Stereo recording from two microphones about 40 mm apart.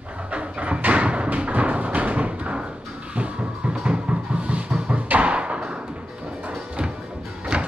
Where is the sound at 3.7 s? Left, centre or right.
Right.